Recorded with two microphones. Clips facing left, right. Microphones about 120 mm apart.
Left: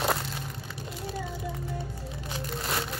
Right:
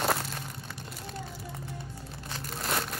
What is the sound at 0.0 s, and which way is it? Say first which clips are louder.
Crushing: left 1 dB; centre (ahead or behind).